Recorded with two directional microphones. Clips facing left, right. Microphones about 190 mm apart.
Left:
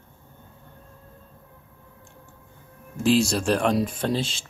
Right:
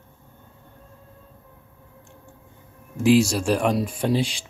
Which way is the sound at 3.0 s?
10° right (ahead or behind).